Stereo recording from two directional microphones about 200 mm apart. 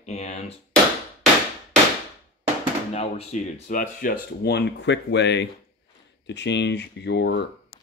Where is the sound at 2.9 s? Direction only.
35° left (ahead or behind).